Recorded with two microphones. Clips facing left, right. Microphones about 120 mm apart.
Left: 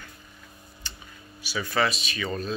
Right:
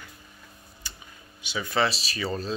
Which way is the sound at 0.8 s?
10° right (ahead or behind).